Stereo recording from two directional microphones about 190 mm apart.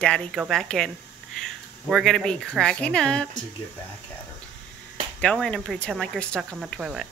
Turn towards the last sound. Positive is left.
turn(degrees=0)  # may be behind; listen again after turning